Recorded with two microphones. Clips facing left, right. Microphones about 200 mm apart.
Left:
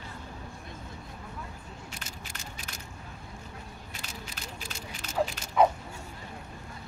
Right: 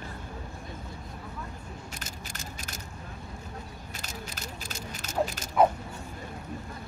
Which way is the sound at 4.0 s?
40° right (ahead or behind).